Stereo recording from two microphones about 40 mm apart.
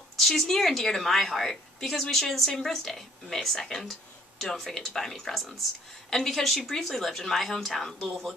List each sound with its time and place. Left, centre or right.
0.2 s speech: centre